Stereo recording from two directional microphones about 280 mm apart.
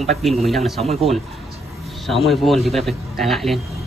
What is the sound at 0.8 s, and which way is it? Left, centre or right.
Speech, right.